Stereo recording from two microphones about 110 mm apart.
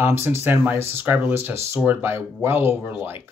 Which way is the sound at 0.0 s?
20° right (ahead or behind).